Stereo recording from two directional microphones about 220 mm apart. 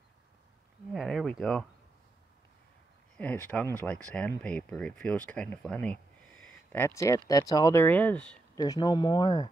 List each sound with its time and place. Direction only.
0.9 s speech: centre (ahead or behind)
3.2 s speech: 5° left (ahead or behind)
8.5 s speech: 15° left (ahead or behind)